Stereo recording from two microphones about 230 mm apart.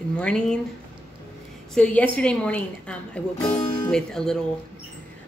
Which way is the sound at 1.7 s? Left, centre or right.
Centre.